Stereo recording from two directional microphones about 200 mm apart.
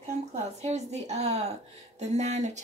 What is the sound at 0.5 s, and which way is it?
Speech, 35° right (ahead or behind).